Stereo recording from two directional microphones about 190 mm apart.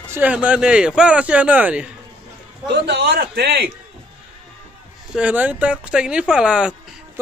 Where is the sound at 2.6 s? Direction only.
65° right (ahead or behind).